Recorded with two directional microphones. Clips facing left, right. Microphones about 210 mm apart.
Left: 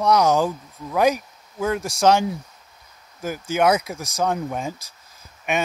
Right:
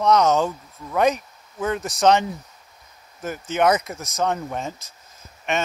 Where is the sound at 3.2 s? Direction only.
5° left (ahead or behind).